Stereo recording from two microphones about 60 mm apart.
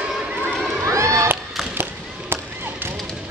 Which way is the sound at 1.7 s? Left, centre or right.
Right.